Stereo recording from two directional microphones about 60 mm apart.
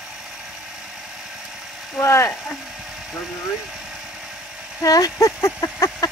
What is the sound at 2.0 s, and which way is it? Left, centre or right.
Speech, left.